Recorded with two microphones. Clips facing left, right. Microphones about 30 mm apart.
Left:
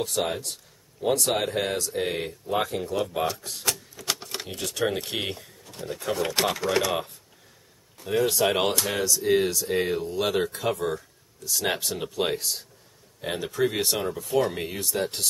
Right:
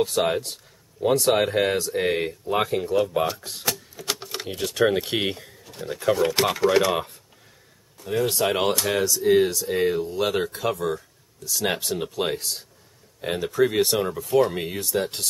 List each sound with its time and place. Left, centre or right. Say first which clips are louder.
0.0 s speech: right 5 dB; centre
6.1 s speech: even; centre
8.0 s speech: even; centre